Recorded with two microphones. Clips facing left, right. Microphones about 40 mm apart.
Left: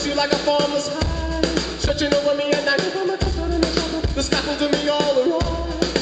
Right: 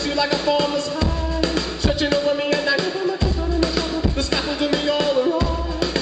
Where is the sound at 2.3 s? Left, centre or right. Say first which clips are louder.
Left 1 dB; centre.